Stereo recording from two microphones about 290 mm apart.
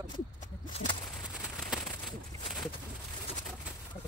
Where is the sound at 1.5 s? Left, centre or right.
Centre.